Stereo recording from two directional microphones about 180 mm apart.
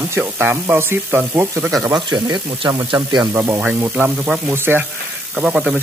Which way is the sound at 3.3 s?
10° right (ahead or behind).